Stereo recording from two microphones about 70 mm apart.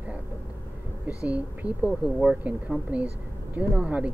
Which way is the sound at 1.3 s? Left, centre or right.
Centre.